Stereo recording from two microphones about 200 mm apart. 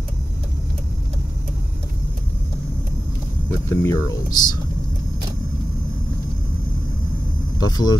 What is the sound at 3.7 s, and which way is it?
Speech, 15° left (ahead or behind).